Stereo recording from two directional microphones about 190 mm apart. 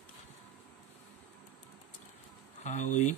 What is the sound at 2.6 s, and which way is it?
Speech, 40° left (ahead or behind).